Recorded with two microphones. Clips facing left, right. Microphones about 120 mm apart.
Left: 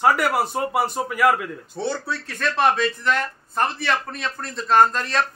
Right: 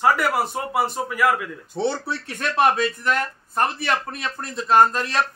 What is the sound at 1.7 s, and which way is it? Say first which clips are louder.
Speech: right 3 dB; 25° right (ahead or behind).